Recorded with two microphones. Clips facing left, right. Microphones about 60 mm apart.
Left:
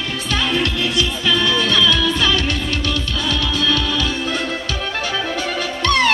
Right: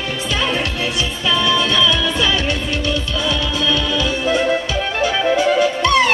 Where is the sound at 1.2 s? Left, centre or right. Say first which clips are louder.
Right 2 dB; right.